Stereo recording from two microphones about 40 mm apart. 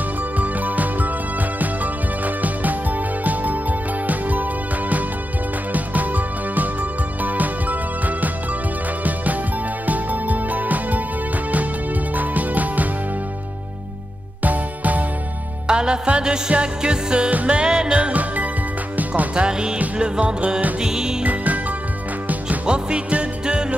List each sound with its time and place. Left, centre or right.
0.4 s music: right
4.1 s music: right
9.0 s music: right
12.2 s music: right
14.4 s music: right
15.6 s music: right
17.8 s music: right
19.3 s music: right
21.2 s music: right
22.7 s music: right